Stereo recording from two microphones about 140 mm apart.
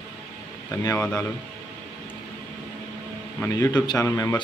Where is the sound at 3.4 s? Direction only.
25° left (ahead or behind).